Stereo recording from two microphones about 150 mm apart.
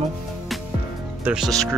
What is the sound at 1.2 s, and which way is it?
Speech, 5° right (ahead or behind).